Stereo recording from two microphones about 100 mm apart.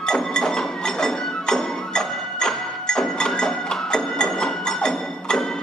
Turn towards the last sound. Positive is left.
turn(degrees=5)  # may be behind; listen again after turning